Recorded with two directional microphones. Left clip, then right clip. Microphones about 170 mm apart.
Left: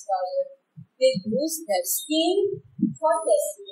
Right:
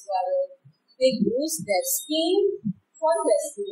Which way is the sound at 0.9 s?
25° right (ahead or behind).